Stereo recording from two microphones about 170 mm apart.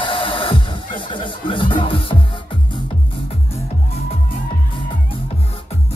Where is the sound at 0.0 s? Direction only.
30° left (ahead or behind).